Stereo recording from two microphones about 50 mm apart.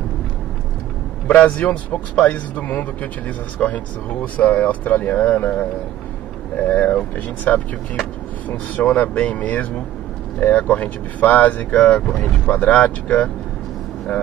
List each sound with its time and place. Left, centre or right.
1.3 s speech: left
8.8 s speech: left
11.7 s speech: centre
12.1 s speech: left